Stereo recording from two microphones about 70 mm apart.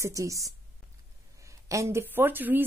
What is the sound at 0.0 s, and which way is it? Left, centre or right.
Speech, right.